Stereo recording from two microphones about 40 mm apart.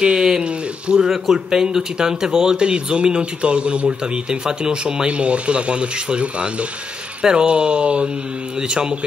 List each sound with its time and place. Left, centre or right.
0.0 s speech: centre
0.4 s speech: right
1.1 s speech: centre